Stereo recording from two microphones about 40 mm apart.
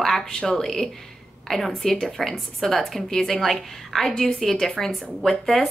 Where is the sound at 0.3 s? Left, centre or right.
Left.